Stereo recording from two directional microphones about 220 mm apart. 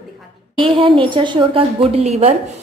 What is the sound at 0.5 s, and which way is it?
A woman's voice, 20° right (ahead or behind).